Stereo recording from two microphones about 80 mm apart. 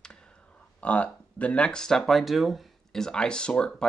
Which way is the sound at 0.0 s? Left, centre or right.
Centre.